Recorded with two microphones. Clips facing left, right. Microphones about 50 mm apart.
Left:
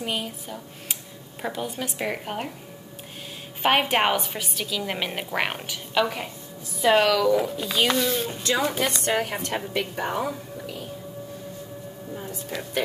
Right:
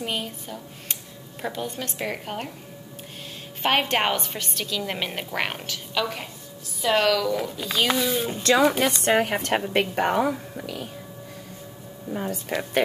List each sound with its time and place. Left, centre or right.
0.0 s a woman's voice: centre
3.6 s a woman's voice: centre
8.6 s a woman's voice: right
9.0 s a woman's voice: right
9.3 s a woman's voice: right
12.3 s speech: right